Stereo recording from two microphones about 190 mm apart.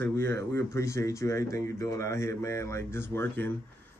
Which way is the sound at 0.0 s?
15° left (ahead or behind).